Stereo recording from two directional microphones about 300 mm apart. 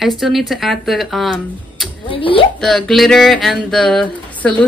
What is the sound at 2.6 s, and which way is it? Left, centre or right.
Speech, centre.